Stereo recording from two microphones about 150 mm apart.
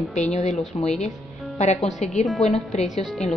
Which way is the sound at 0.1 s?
50° left (ahead or behind).